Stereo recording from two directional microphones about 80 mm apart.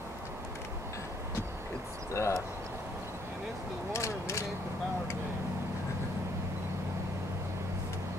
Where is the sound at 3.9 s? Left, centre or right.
Left.